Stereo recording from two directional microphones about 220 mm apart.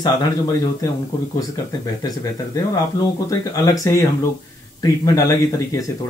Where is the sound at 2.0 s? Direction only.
15° left (ahead or behind).